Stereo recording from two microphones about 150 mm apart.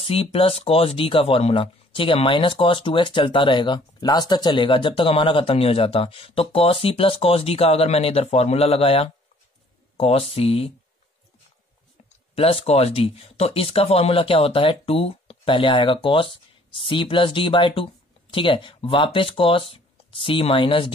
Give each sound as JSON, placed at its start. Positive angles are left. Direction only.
{"t": 0.0, "sound": "speech", "side_deg": 40}
{"t": 12.4, "sound": "speech", "side_deg": 40}